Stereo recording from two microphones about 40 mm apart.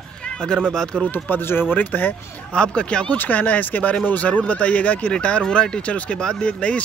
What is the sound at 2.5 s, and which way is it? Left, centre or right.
Speech, left.